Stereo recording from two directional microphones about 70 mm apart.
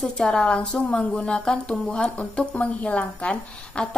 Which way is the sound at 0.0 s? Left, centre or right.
Centre.